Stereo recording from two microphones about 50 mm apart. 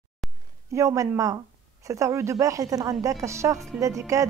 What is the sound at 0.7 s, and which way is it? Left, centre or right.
A woman's voice, right.